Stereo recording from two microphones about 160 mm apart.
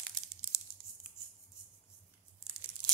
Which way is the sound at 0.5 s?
10° right (ahead or behind).